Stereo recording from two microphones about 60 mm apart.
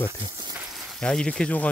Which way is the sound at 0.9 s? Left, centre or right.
Centre.